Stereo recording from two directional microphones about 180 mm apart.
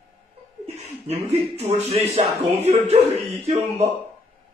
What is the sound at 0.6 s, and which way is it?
Speech, 35° right (ahead or behind).